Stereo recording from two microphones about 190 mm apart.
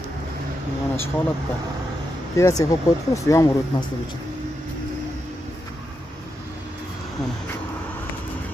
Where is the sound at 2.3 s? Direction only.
15° left (ahead or behind).